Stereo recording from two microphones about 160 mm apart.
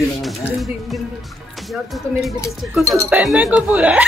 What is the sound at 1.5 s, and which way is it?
Speech, centre (ahead or behind).